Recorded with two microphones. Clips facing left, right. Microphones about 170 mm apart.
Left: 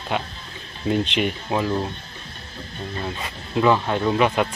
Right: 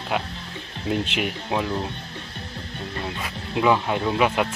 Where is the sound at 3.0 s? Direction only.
5° right (ahead or behind).